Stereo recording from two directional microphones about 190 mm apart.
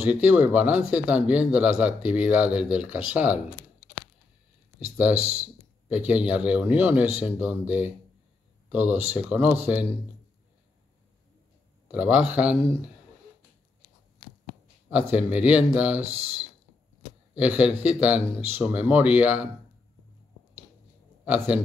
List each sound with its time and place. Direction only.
0.0 s speech: 10° right (ahead or behind)
5.2 s speech: 35° right (ahead or behind)
5.9 s speech: 10° right (ahead or behind)
11.9 s speech: 10° right (ahead or behind)
14.9 s speech: 5° right (ahead or behind)
16.1 s speech: 35° right (ahead or behind)
17.4 s speech: 5° right (ahead or behind)